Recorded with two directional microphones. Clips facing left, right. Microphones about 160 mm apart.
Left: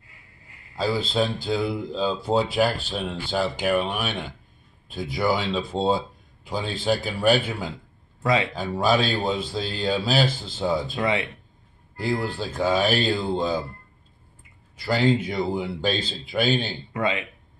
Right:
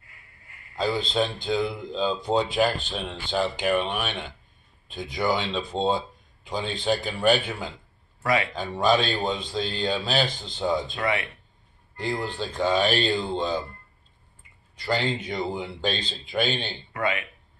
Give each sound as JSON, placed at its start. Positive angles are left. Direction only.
{"t": 0.7, "sound": "a man's voice", "side_deg": 0}
{"t": 8.2, "sound": "speech", "side_deg": 20}
{"t": 8.5, "sound": "a man's voice", "side_deg": 5}
{"t": 12.4, "sound": "speech", "side_deg": 10}
{"t": 14.8, "sound": "a man's voice", "side_deg": 5}
{"t": 16.9, "sound": "speech", "side_deg": 20}